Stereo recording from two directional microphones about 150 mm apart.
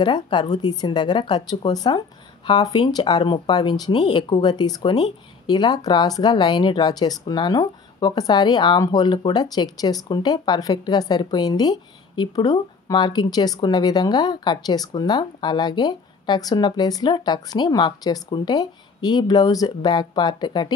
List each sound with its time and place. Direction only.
0.0 s speech: 30° left (ahead or behind)